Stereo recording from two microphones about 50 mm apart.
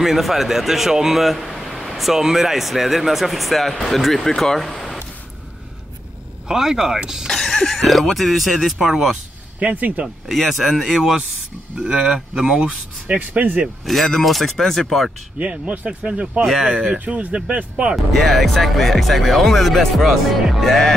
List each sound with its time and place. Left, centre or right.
0.0 s speech: centre
6.4 s speech: centre
7.2 s speech: centre
9.6 s speech: right
10.2 s speech: centre
11.8 s speech: centre
13.2 s speech: right
13.9 s speech: centre
15.3 s speech: right
16.4 s speech: centre
17.0 s speech: right
18.1 s speech: centre